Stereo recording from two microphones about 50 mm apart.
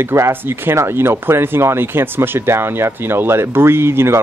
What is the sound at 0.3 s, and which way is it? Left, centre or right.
Speech, right.